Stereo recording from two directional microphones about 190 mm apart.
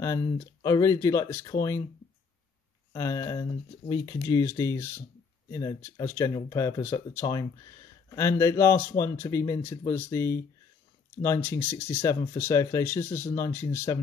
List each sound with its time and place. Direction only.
0.0 s speech: 15° left (ahead or behind)
2.9 s speech: 15° left (ahead or behind)